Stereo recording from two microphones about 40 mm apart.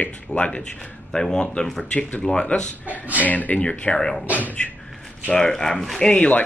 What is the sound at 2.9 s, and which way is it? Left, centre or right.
Speech, right.